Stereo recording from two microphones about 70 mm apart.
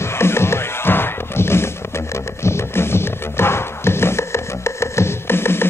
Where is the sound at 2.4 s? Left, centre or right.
Left.